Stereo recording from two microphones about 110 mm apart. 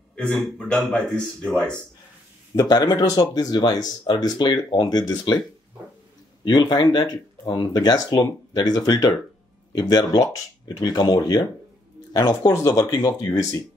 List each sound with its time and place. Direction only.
0.1 s speech: 5° left (ahead or behind)
2.5 s speech: 35° left (ahead or behind)
6.4 s speech: 40° left (ahead or behind)